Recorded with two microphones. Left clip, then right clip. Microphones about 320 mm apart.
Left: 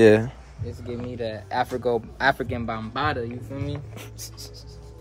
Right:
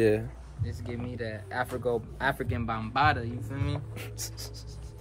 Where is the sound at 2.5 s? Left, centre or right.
Centre.